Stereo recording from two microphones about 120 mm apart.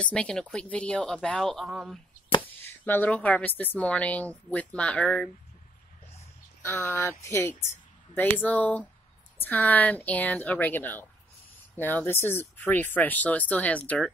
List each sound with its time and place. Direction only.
0.0 s speech: 10° left (ahead or behind)
2.6 s speech: 15° left (ahead or behind)
6.6 s speech: 20° left (ahead or behind)